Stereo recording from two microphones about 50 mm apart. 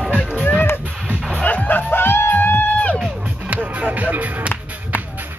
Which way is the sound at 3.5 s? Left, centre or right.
Right.